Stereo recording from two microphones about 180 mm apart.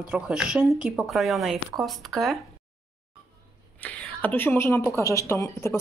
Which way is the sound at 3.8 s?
10° left (ahead or behind).